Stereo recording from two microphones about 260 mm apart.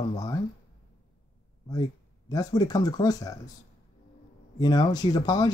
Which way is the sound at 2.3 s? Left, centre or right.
Centre.